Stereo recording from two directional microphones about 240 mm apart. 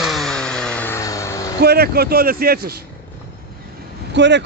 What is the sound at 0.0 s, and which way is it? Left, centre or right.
Vehicle, centre.